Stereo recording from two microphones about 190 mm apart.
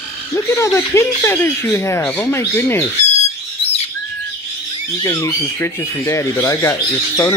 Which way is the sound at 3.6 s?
30° left (ahead or behind).